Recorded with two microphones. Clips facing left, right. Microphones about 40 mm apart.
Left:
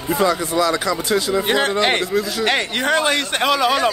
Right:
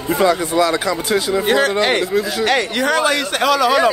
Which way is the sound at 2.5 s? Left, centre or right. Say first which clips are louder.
Right 1 dB; left.